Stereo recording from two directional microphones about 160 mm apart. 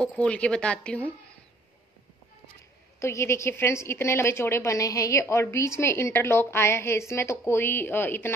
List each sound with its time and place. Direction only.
0.0 s a woman's voice: 5° left (ahead or behind)
3.0 s a woman's voice: 15° left (ahead or behind)